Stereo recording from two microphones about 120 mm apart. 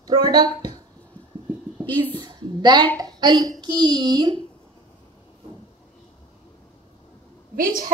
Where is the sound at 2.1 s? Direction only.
35° right (ahead or behind).